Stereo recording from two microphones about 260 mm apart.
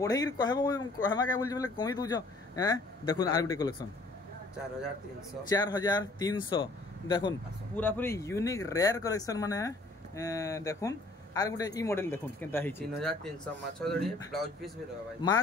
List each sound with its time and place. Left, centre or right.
0.0 s speech: centre
5.5 s speech: centre